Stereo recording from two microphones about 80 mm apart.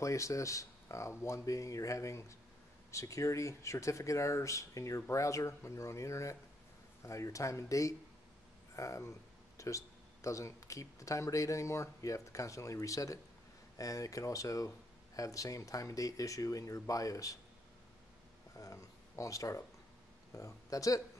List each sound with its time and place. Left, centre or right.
0.0 s speech: left
18.5 s speech: left